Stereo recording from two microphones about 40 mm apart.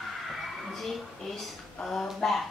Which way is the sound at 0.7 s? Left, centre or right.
Centre.